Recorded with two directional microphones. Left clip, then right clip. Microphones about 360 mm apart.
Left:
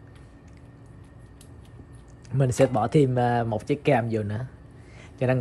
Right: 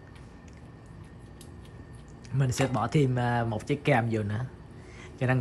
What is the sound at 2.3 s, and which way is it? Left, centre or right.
Speech, centre.